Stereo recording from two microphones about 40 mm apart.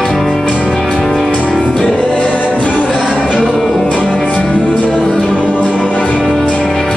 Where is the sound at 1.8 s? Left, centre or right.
Centre.